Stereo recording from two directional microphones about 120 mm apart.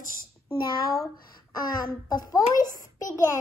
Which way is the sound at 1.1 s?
35° left (ahead or behind).